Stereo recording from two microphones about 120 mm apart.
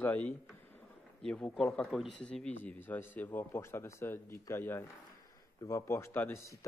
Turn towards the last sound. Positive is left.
turn(degrees=20)  # may be behind; listen again after turning